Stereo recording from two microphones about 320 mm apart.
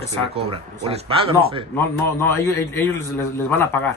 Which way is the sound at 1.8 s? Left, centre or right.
Centre.